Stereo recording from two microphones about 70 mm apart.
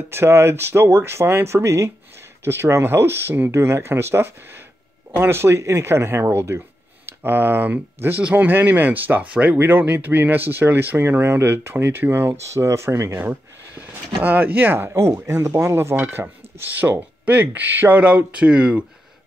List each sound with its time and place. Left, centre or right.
0.1 s speech: right; by 9.6 s centre
9.6 s speech: right
12.4 s speech: right
14.2 s speech: right